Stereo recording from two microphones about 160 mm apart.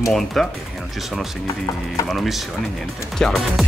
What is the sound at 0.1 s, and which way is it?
Speech, centre (ahead or behind).